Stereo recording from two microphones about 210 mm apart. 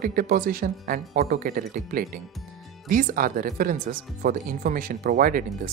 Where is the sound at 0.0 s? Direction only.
45° right (ahead or behind).